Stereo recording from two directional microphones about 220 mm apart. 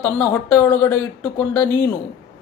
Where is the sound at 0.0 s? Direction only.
10° left (ahead or behind).